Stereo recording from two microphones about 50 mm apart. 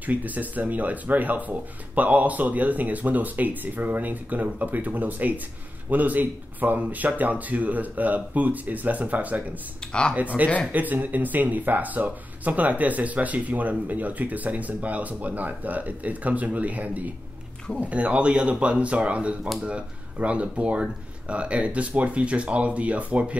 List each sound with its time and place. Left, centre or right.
0.0 s speech: right